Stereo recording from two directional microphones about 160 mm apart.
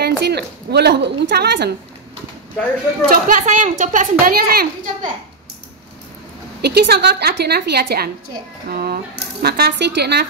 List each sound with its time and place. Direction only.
0.0 s a woman's voice: 90° right
3.1 s a child's voice: 55° right (ahead or behind); by 5.1 s 70° right (ahead or behind)
6.6 s a woman's voice: 85° right